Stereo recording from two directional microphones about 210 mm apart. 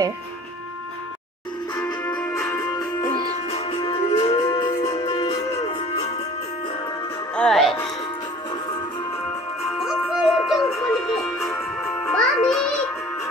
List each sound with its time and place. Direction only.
1.8 s music: 20° left (ahead or behind)
3.4 s music: 25° left (ahead or behind)
4.8 s music: 30° left (ahead or behind)
7.3 s music: centre (ahead or behind)
9.7 s music: centre (ahead or behind)